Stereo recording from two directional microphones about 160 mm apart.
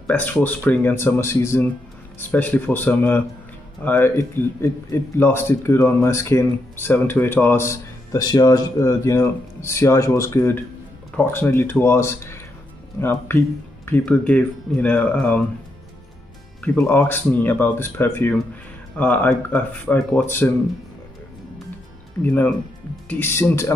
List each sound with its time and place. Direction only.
0.0 s speech: 10° left (ahead or behind)
16.6 s speech: 15° left (ahead or behind)
22.2 s speech: 15° left (ahead or behind)